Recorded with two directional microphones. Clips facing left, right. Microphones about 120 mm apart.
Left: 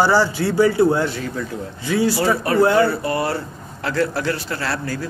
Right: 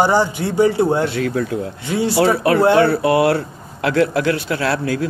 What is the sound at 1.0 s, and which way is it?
Speech, 65° right (ahead or behind).